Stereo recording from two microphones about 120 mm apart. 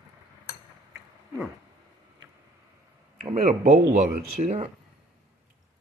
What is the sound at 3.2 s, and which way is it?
Speech, 60° right (ahead or behind).